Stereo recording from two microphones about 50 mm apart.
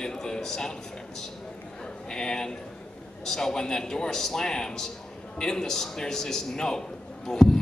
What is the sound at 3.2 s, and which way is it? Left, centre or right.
Speech, centre.